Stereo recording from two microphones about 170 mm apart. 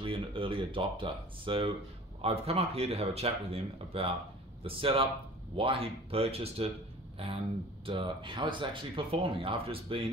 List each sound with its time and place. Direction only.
0.0 s speech: 30° right (ahead or behind)